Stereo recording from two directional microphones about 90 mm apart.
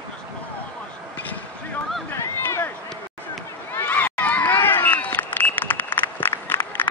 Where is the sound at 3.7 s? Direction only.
20° left (ahead or behind).